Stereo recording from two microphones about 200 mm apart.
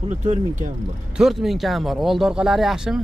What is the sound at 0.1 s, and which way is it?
Speech, 35° right (ahead or behind).